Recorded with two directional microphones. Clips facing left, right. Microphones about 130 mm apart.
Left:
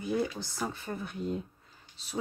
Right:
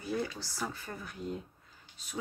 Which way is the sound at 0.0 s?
20° left (ahead or behind).